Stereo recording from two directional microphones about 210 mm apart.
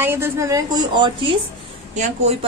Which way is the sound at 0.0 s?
10° right (ahead or behind).